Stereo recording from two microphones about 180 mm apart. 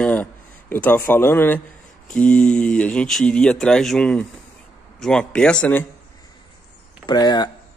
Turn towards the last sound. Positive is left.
turn(degrees=25)  # may be behind; listen again after turning